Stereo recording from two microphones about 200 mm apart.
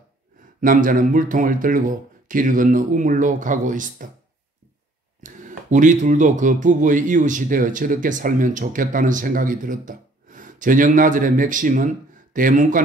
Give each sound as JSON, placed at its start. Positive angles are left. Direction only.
{"t": 0.6, "sound": "speech", "side_deg": -40}
{"t": 5.2, "sound": "speech", "side_deg": -40}